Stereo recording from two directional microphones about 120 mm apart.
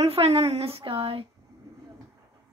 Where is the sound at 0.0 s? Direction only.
55° right (ahead or behind).